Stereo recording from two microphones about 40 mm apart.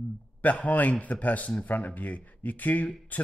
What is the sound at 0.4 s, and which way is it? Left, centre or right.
A man's voice, left.